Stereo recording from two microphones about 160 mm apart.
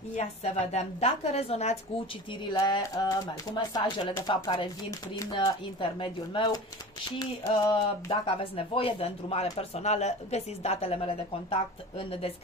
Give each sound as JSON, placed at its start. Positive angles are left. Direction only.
{"t": 0.1, "sound": "a woman's voice", "side_deg": 45}
{"t": 2.5, "sound": "speech", "side_deg": 25}